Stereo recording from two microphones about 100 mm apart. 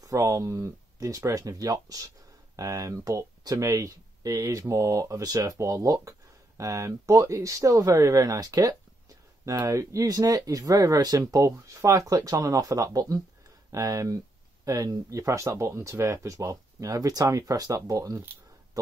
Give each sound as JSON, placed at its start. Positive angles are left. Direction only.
{"t": 0.0, "sound": "speech", "side_deg": -30}